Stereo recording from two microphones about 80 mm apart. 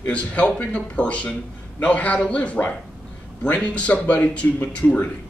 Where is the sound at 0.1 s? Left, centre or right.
Centre.